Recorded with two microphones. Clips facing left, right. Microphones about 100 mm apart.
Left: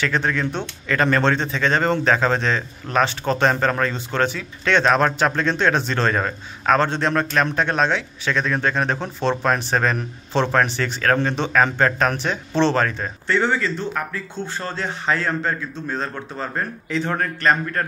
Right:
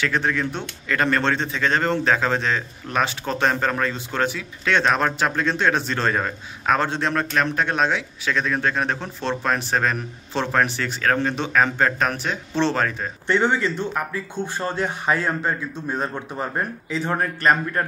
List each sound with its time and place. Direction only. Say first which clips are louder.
0.0 s speech: left 1 dB; centre (ahead or behind)
13.3 s a man's voice: even; 20° right (ahead or behind)